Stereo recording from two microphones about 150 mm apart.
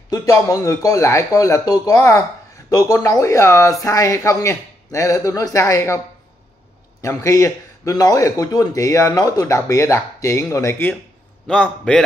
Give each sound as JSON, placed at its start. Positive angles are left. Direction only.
{"t": 0.1, "sound": "speech", "side_deg": 20}
{"t": 7.0, "sound": "a man's voice", "side_deg": 20}